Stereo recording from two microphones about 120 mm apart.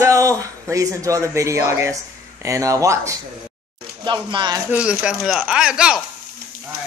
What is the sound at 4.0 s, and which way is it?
Speech, 40° right (ahead or behind).